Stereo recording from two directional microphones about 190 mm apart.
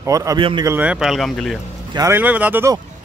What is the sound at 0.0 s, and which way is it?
Speech, 15° right (ahead or behind).